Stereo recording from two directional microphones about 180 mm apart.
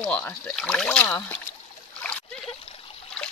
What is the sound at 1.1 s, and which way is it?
Speech, 20° left (ahead or behind).